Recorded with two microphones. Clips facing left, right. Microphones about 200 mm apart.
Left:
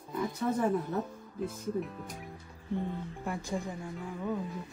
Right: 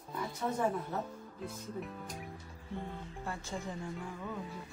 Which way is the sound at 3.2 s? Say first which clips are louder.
Left 4 dB; 15° left (ahead or behind).